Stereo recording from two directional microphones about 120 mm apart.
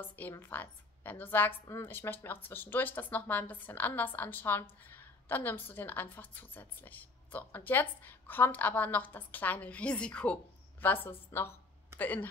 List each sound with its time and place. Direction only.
0.0 s a woman's voice: 15° left (ahead or behind)